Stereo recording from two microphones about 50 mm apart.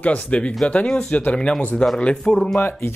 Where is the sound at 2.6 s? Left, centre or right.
Left.